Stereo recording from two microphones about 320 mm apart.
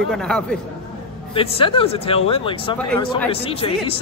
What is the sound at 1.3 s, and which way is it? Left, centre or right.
Speech, centre.